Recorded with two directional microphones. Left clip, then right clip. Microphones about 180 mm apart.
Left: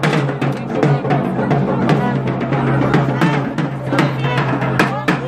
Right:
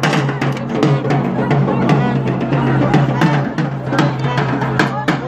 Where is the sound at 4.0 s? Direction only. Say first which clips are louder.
Even; 25° right (ahead or behind).